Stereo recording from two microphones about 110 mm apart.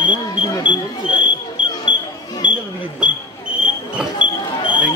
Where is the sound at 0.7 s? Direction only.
45° left (ahead or behind).